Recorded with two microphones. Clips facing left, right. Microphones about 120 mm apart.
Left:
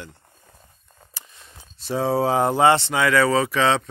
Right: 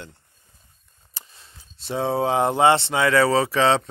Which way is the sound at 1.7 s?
25° right (ahead or behind).